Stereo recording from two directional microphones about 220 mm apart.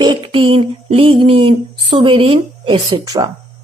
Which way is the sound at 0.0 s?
20° right (ahead or behind).